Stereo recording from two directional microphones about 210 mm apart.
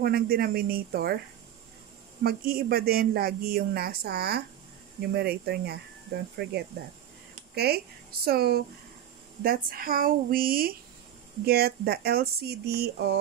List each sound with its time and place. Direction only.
0.0 s speech: 45° right (ahead or behind)
2.2 s speech: 45° right (ahead or behind)